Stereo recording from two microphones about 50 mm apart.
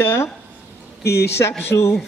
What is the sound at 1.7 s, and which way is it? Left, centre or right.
Speech, left.